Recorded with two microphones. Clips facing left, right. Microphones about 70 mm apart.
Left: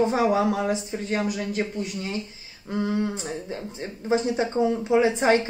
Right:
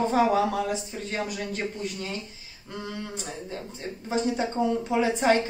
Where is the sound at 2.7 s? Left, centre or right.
Left.